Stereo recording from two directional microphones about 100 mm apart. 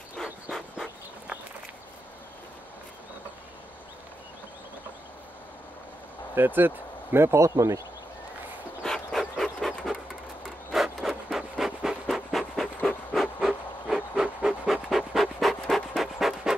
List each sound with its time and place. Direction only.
0.2 s pant: 5° left (ahead or behind)
6.3 s speech: 20° right (ahead or behind)
8.8 s a sound: 5° left (ahead or behind)
9.2 s pant: 5° left (ahead or behind)
10.7 s rub: centre (ahead or behind)